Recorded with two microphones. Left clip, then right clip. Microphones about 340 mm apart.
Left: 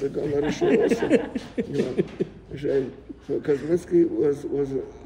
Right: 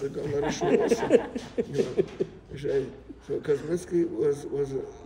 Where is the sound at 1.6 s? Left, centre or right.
Left.